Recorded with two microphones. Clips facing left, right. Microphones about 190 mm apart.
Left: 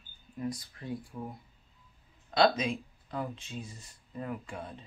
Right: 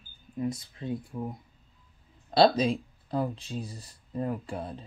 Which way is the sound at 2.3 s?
35° right (ahead or behind).